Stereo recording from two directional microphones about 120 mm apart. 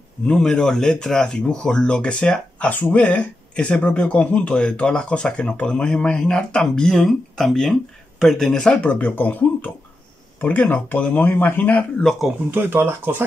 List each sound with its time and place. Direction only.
0.3 s speech: 5° left (ahead or behind)
12.0 s speech: 5° left (ahead or behind)
12.4 s speech: 15° right (ahead or behind)